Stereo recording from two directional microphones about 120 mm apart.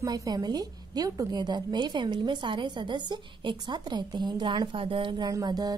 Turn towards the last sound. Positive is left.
turn(degrees=-35)  # may be behind; listen again after turning